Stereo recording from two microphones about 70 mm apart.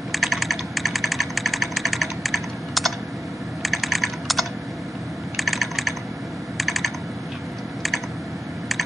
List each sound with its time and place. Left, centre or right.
0.1 s typing: centre